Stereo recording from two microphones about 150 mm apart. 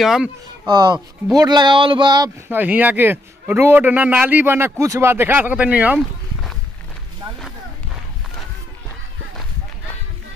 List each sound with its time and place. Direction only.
0.0 s speech: 5° right (ahead or behind)
0.7 s speech: 30° right (ahead or behind)
2.5 s a man's voice: 10° right (ahead or behind)